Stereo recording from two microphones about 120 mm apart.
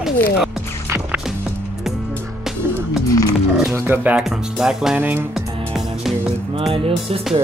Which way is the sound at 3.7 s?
15° right (ahead or behind).